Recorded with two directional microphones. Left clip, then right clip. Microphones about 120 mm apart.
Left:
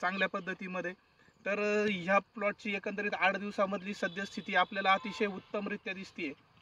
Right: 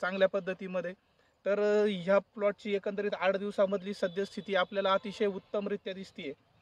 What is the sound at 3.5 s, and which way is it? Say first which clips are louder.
Speech: right 4 dB; 50° right (ahead or behind).